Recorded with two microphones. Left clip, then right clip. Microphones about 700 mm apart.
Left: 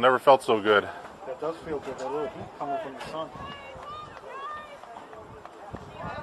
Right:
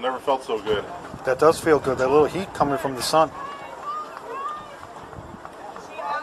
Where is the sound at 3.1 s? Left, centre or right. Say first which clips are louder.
Right 18 dB; right.